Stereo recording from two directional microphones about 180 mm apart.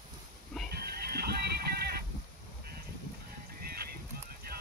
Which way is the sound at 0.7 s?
60° right (ahead or behind).